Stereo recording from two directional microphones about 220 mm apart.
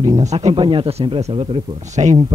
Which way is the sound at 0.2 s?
30° right (ahead or behind).